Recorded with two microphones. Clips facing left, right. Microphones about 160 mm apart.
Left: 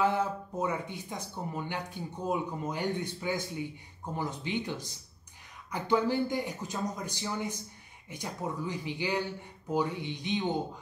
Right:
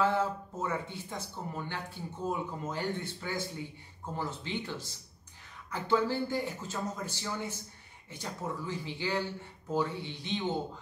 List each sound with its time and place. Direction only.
0.0 s speech: 15° left (ahead or behind)